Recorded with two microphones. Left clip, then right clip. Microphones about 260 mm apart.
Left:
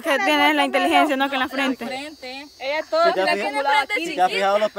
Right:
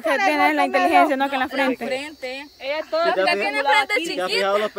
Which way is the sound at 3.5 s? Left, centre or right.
Centre.